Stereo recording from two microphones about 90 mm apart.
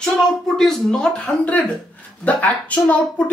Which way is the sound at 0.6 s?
5° left (ahead or behind).